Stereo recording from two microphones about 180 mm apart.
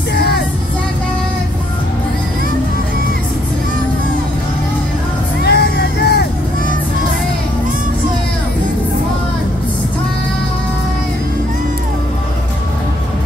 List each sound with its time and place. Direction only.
0.1 s music: 65° left (ahead or behind)
5.4 s vehicle: 65° left (ahead or behind)